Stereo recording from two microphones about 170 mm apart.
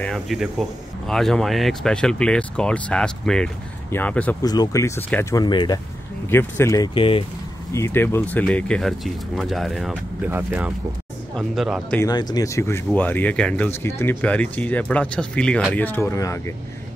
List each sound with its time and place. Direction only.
0.0 s speech: centre (ahead or behind)
4.4 s speech: 20° left (ahead or behind)
6.2 s speech: 15° left (ahead or behind)
6.9 s speech: 30° left (ahead or behind)
7.7 s speech: 15° left (ahead or behind); by 10.3 s centre (ahead or behind)
10.3 s speech: 10° right (ahead or behind)
12.0 s speech: 25° left (ahead or behind)